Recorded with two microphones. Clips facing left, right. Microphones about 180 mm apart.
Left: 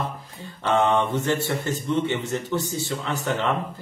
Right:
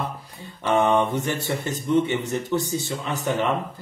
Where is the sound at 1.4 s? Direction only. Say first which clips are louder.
Left 1 dB; 20° right (ahead or behind).